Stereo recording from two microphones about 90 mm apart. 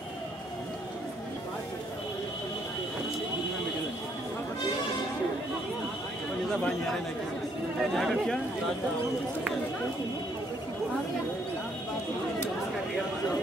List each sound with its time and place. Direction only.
7.8 s speech: centre (ahead or behind)